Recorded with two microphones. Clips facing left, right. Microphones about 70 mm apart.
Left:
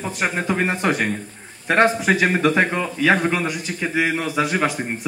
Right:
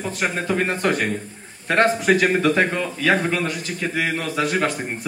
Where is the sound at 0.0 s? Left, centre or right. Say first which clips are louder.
Left 1 dB; centre.